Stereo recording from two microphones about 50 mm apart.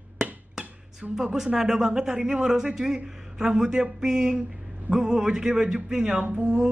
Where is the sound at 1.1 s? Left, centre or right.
Centre.